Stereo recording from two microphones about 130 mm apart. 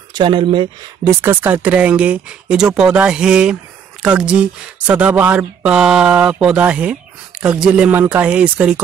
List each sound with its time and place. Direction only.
0.1 s speech: 35° right (ahead or behind)
1.0 s speech: 20° right (ahead or behind)